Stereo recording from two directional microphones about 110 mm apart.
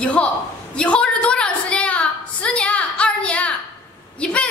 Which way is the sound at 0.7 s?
10° left (ahead or behind).